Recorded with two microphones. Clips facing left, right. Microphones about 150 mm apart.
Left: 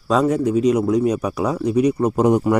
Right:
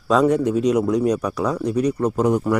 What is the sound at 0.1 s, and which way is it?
A man's voice, centre (ahead or behind).